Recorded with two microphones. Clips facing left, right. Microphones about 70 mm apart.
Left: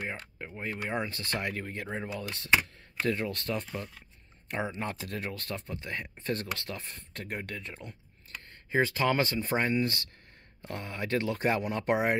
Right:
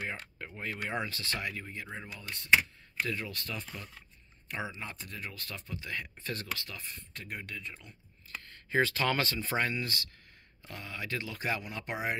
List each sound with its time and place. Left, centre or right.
0.1 s speech: centre
1.0 s speech: left
2.1 s speech: left
3.0 s speech: left
7.2 s speech: left
8.5 s speech: centre
10.6 s speech: left